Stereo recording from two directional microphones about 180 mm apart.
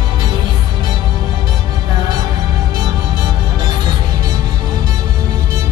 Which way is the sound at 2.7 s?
25° right (ahead or behind).